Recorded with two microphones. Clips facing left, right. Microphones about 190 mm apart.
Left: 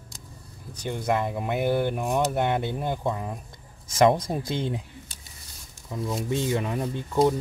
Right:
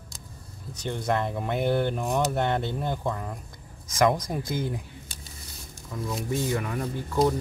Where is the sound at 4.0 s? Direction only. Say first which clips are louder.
Left 3 dB; 25° left (ahead or behind).